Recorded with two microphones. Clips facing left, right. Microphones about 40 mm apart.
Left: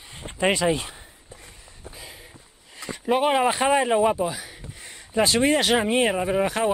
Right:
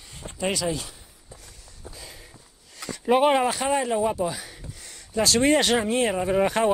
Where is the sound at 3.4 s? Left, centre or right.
Left.